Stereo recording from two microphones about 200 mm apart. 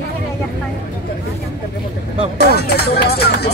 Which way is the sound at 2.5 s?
55° left (ahead or behind).